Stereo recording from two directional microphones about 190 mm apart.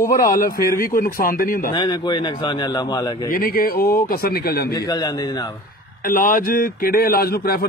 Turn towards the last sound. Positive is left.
turn(degrees=55)  # may be behind; listen again after turning